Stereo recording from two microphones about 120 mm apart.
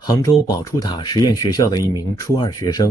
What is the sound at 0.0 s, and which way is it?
Speech, 30° left (ahead or behind).